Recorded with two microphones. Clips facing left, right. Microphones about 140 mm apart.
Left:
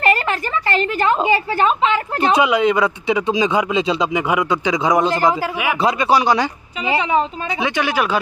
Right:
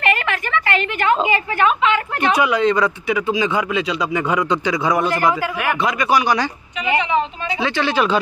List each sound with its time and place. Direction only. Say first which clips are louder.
0.0 s a woman's voice: left 2 dB; 35° left (ahead or behind)
2.5 s a man's voice: left 1 dB; 10° left (ahead or behind)
4.1 s a man's voice: left 1 dB; 10° left (ahead or behind)
6.8 s a woman's voice: left 1 dB; 30° left (ahead or behind)
7.6 s a man's voice: right 1 dB; 15° left (ahead or behind)